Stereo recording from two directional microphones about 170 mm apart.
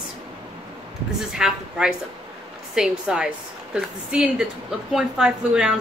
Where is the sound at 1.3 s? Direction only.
5° right (ahead or behind).